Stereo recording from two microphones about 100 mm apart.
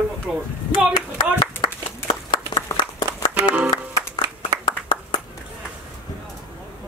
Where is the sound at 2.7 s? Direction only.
40° left (ahead or behind).